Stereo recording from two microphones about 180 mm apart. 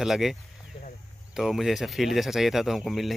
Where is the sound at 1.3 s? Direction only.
Centre (ahead or behind).